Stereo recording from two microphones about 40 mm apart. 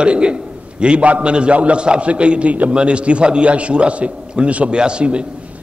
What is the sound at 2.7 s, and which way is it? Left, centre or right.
A man's voice, right.